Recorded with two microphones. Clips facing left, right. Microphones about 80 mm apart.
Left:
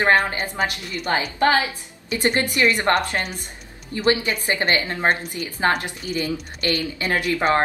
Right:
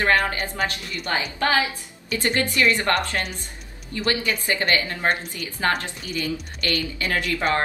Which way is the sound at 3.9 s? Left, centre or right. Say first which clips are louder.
Left 4 dB; left.